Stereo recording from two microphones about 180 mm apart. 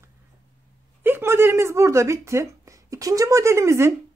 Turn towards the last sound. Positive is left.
turn(degrees=-15)  # may be behind; listen again after turning